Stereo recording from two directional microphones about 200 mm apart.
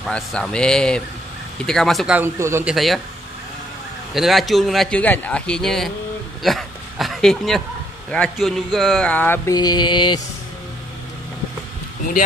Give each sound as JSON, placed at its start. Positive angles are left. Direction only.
{"t": 0.0, "sound": "a man's voice", "side_deg": 5}
{"t": 2.7, "sound": "a man's voice", "side_deg": 0}
{"t": 4.1, "sound": "a man's voice", "side_deg": 0}
{"t": 6.4, "sound": "a sound", "side_deg": 0}
{"t": 8.1, "sound": "a man's voice", "side_deg": 5}
{"t": 8.7, "sound": "a sound", "side_deg": 0}